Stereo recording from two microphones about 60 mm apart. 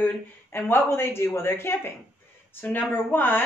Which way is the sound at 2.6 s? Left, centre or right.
Left.